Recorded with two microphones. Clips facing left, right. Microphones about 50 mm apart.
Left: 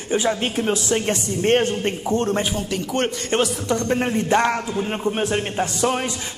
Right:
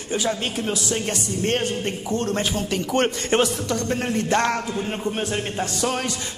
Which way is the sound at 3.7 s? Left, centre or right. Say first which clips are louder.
Left 3 dB; left.